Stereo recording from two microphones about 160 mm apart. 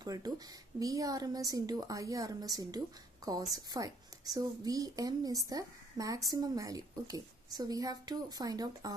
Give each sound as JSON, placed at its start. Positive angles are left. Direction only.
{"t": 0.0, "sound": "a woman's voice", "side_deg": -25}